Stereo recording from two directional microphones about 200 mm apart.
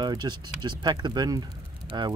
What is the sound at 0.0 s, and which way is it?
Speech, 20° right (ahead or behind).